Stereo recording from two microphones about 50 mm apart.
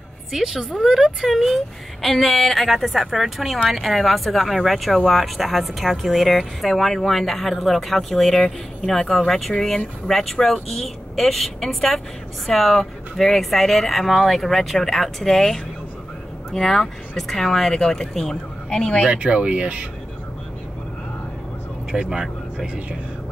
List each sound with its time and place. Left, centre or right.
0.3 s speech: centre
19.0 s speech: right
21.9 s speech: centre